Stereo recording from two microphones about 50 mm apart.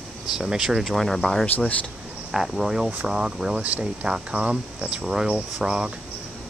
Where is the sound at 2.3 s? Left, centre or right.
Centre.